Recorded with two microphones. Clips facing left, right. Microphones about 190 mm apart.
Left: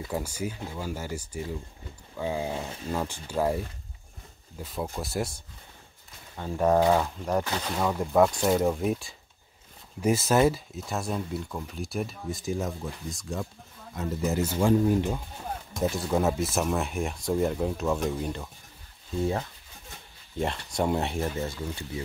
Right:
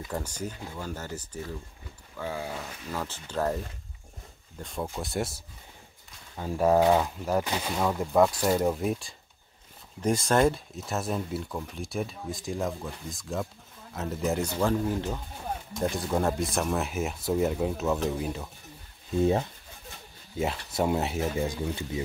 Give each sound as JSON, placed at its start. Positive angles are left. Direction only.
{"t": 0.1, "sound": "speech", "side_deg": 10}
{"t": 3.1, "sound": "speech", "side_deg": 10}
{"t": 6.3, "sound": "speech", "side_deg": -5}
{"t": 7.7, "sound": "speech", "side_deg": 0}
{"t": 14.6, "sound": "speech", "side_deg": 15}
{"t": 15.8, "sound": "speech", "side_deg": 0}
{"t": 19.1, "sound": "speech", "side_deg": -20}
{"t": 20.3, "sound": "speech", "side_deg": -5}
{"t": 21.4, "sound": "speech", "side_deg": -15}